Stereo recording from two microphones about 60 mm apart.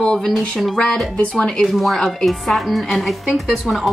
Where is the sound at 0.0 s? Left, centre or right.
Centre.